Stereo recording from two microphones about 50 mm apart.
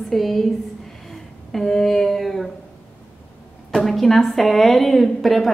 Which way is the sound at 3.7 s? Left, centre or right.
Centre.